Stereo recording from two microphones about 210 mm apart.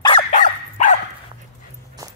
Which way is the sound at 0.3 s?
35° left (ahead or behind).